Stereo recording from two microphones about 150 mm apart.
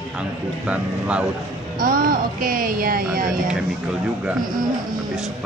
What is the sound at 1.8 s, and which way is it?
Speech, 70° right (ahead or behind).